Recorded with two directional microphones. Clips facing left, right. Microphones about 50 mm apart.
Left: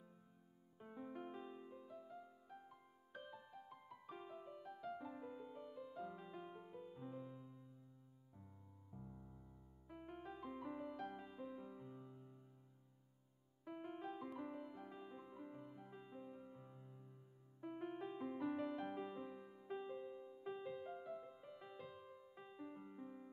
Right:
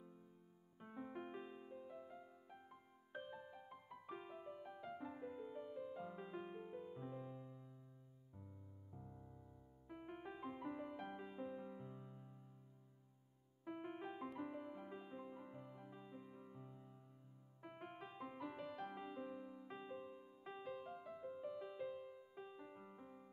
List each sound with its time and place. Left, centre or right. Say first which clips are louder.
0.7 s piano: right 1 dB; centre
8.4 s music: right 4 dB; centre
13.7 s music: even; centre
15.9 s music: left 2 dB; centre
18.9 s music: left 1 dB; centre
19.9 s music: left 2 dB; centre
20.4 s music: left 2 dB; centre